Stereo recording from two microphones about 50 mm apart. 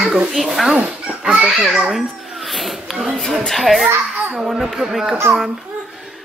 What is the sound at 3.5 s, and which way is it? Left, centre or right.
Speech, centre.